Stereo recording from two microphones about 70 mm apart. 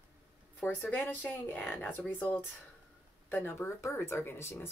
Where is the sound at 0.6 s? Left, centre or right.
Left.